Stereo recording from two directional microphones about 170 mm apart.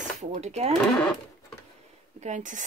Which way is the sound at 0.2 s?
40° right (ahead or behind).